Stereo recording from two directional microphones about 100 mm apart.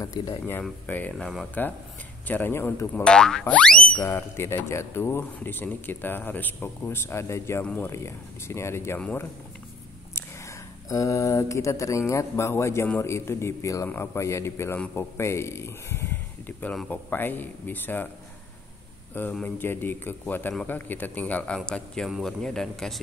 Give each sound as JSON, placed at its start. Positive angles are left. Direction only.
{"t": 0.0, "sound": "a sound", "side_deg": 35}
{"t": 0.8, "sound": "speech", "side_deg": 15}
{"t": 1.1, "sound": "speech", "side_deg": 0}
{"t": 2.2, "sound": "speech", "side_deg": 20}
{"t": 2.9, "sound": "speech", "side_deg": 10}
{"t": 4.0, "sound": "speech", "side_deg": 25}
{"t": 7.6, "sound": "speech", "side_deg": 15}
{"t": 7.9, "sound": "speech", "side_deg": 25}
{"t": 10.1, "sound": "mantra", "side_deg": 30}
{"t": 12.1, "sound": "speech", "side_deg": 30}
{"t": 19.1, "sound": "speech", "side_deg": 20}